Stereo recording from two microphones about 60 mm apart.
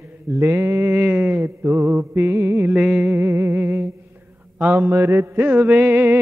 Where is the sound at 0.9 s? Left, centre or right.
Right.